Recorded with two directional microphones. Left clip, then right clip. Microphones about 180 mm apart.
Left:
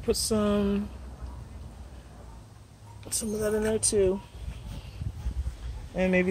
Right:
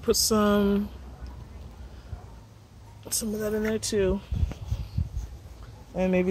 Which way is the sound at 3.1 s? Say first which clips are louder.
Left 1 dB; 40° right (ahead or behind).